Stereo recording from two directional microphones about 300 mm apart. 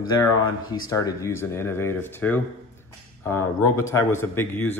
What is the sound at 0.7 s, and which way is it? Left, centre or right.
Speech, centre.